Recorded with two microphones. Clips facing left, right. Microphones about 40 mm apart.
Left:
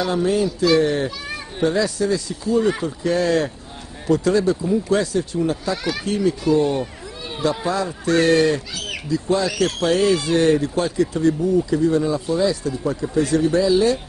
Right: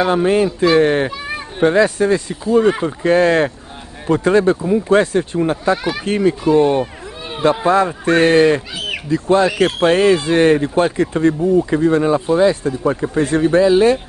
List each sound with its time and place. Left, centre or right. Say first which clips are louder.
0.0 s speech: right 5 dB; right
7.3 s speech: right 6 dB; right
7.6 s speech: right 8 dB; right
9.1 s speech: right 6 dB; right